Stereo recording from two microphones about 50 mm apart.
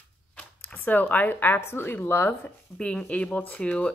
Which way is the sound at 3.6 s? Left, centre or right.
Left.